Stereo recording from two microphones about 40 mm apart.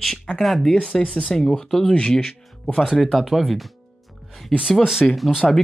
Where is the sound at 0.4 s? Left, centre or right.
Centre.